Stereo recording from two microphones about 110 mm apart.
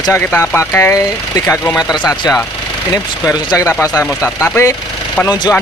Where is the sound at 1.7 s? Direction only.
35° left (ahead or behind).